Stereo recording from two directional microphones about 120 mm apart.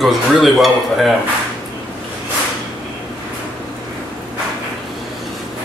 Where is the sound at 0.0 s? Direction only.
Centre (ahead or behind).